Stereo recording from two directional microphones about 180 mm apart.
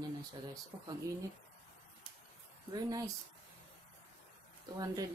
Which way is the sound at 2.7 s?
20° right (ahead or behind).